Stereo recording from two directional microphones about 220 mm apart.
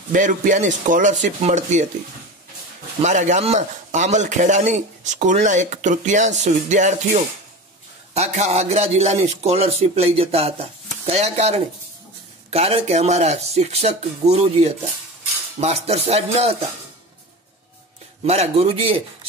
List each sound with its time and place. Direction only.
0.1 s a man's voice: 35° right (ahead or behind)
3.0 s a man's voice: 35° right (ahead or behind)
8.1 s a man's voice: 30° right (ahead or behind)
18.2 s speech: 30° right (ahead or behind)